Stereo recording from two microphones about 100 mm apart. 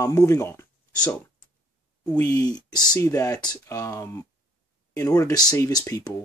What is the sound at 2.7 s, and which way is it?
Speech, 45° left (ahead or behind).